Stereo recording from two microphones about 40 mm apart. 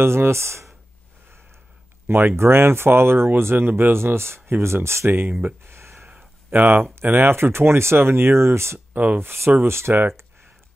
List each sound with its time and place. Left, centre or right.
0.0 s speech: right
2.0 s speech: right
5.6 s a sound: right
6.0 s a sound: right
7.0 s speech: right
8.7 s speech: right
9.7 s speech: right